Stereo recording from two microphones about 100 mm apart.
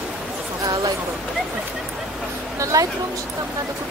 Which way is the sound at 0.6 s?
35° right (ahead or behind).